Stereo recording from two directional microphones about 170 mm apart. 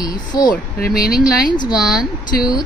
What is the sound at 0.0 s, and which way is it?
Speech, 25° left (ahead or behind).